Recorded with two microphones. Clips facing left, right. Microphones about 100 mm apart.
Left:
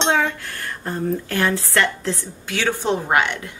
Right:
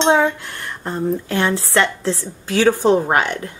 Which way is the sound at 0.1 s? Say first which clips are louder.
Right 5 dB; 25° right (ahead or behind).